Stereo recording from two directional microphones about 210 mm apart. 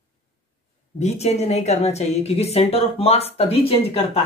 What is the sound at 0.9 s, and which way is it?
Speech, 30° left (ahead or behind).